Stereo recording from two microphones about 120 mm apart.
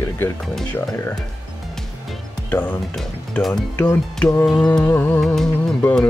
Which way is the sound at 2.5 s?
15° left (ahead or behind).